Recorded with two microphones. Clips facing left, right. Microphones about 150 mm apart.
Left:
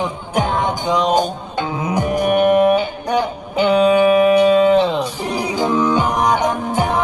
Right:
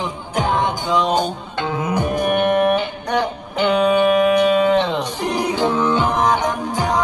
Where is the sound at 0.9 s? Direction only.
45° left (ahead or behind).